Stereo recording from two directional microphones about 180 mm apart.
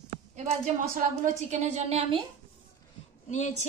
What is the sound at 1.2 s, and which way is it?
Speech, 40° right (ahead or behind).